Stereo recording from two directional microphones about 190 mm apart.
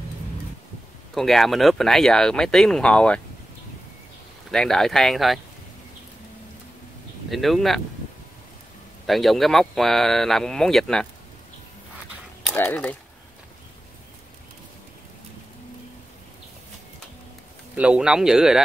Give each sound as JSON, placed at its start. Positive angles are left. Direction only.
{"t": 1.1, "sound": "speech", "side_deg": 0}
{"t": 4.5, "sound": "speech", "side_deg": 0}
{"t": 7.2, "sound": "speech", "side_deg": 0}
{"t": 9.0, "sound": "speech", "side_deg": 0}
{"t": 12.5, "sound": "speech", "side_deg": 10}
{"t": 17.7, "sound": "speech", "side_deg": -5}